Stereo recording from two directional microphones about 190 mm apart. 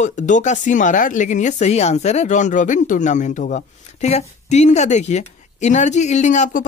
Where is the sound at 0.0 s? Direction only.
40° left (ahead or behind).